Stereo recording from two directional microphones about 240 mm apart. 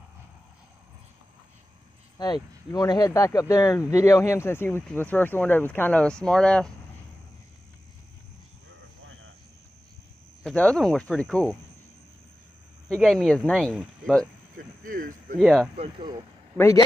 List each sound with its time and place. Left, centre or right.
2.1 s speech: centre
8.6 s vehicle: right
10.4 s speech: centre
12.8 s speech: centre
14.9 s speech: right
15.3 s speech: centre
15.7 s speech: right
16.5 s speech: centre